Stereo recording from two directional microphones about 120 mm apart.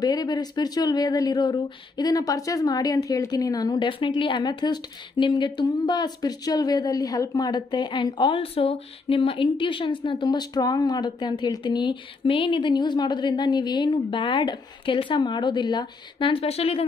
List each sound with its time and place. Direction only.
0.0 s speech: 35° left (ahead or behind)
4.0 s speech: 45° left (ahead or behind)